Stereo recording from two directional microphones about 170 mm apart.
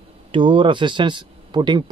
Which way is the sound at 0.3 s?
30° right (ahead or behind).